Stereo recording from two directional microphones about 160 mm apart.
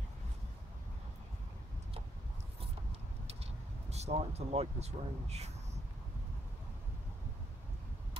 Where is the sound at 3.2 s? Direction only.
40° right (ahead or behind).